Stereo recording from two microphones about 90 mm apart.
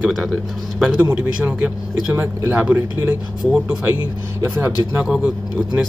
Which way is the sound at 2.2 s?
30° right (ahead or behind).